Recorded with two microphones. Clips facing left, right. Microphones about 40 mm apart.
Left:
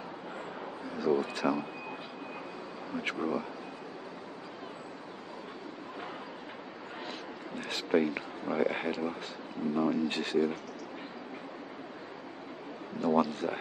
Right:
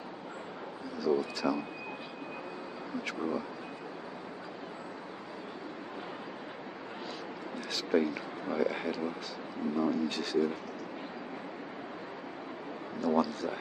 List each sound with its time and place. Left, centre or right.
0.9 s speech: left
7.7 s speech: left
13.0 s speech: left